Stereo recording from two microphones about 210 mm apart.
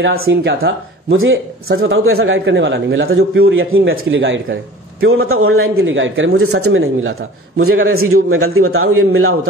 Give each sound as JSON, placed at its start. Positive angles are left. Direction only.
{"t": 0.0, "sound": "speech", "side_deg": -55}
{"t": 1.1, "sound": "a man's voice", "side_deg": -70}
{"t": 5.0, "sound": "a man's voice", "side_deg": -75}
{"t": 6.4, "sound": "a man's voice", "side_deg": -90}